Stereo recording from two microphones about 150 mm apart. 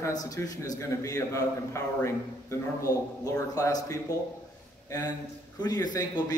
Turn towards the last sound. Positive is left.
turn(degrees=25)  # may be behind; listen again after turning